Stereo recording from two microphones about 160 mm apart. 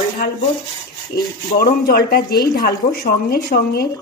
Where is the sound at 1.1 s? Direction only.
80° left.